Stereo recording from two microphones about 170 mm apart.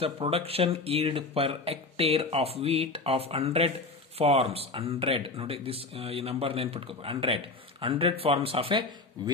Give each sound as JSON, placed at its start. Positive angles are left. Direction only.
{"t": 0.0, "sound": "speech", "side_deg": -35}